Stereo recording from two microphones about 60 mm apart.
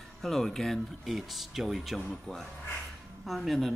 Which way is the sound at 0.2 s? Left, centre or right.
Centre.